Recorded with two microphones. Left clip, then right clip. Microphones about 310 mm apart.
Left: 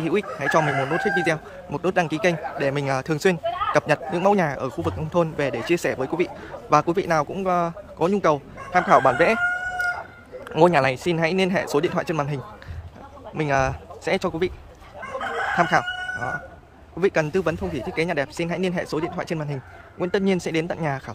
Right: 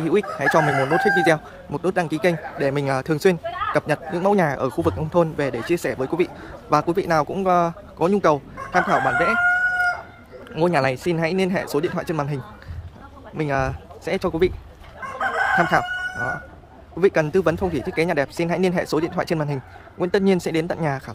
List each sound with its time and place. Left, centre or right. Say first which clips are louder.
0.0 s speech: right 4 dB; centre
3.4 s speech: left 1 dB; left
3.7 s speech: left 1 dB; centre
10.5 s speech: left 2 dB; centre
13.4 s speech: left 1 dB; centre
15.5 s speech: left 2 dB; centre